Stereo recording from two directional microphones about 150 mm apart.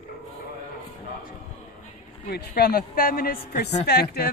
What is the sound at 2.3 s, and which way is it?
A woman's voice, 90° left.